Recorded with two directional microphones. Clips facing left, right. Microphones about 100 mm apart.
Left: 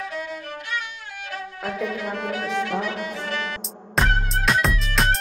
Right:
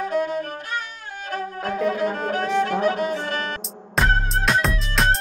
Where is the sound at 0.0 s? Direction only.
40° right (ahead or behind).